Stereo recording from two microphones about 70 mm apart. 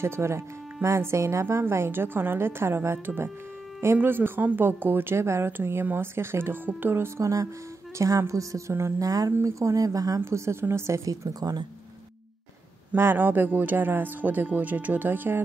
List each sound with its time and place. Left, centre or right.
0.0 s speech: right
7.2 s a woman's voice: right
9.0 s speech: right
10.2 s speech: right
11.1 s speech: right
12.9 s speech: right